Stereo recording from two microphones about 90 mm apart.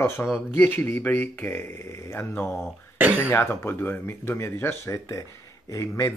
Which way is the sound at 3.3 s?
25° left (ahead or behind).